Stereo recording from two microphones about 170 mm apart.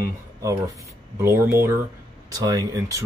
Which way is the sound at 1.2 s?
15° right (ahead or behind).